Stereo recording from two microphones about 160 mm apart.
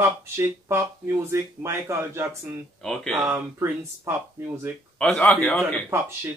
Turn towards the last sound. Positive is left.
turn(degrees=5)  # may be behind; listen again after turning